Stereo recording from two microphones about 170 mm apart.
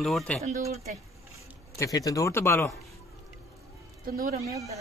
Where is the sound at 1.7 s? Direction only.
20° left (ahead or behind).